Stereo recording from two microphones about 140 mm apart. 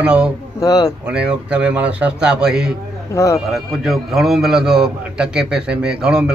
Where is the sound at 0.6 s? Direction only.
25° left (ahead or behind).